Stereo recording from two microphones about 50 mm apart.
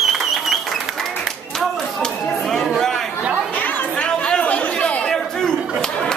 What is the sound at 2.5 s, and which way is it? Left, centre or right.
Chatter, centre.